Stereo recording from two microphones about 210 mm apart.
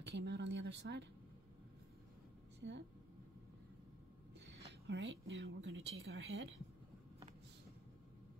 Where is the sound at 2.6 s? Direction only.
50° right (ahead or behind).